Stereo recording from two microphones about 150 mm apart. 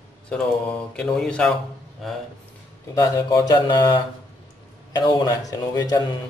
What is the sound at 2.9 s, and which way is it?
Speech, 25° left (ahead or behind).